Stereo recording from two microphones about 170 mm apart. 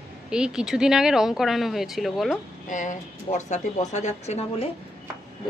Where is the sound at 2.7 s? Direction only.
50° left (ahead or behind).